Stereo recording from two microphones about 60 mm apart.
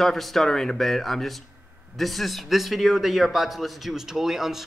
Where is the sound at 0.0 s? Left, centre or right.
Centre.